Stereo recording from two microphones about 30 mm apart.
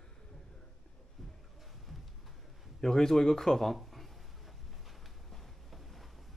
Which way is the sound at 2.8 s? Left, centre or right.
Centre.